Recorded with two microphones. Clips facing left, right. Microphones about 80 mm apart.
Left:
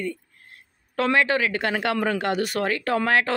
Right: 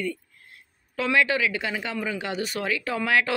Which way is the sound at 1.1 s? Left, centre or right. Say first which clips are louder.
Even; left.